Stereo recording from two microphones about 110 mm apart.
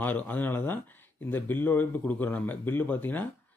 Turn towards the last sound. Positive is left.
turn(degrees=15)  # may be behind; listen again after turning